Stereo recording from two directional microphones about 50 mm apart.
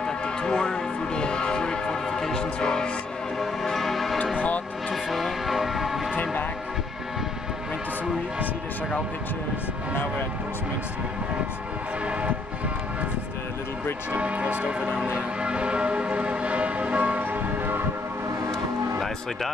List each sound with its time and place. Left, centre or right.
0.0 s music: centre
5.1 s vehicle: centre
14.1 s church bell: right
17.2 s music: right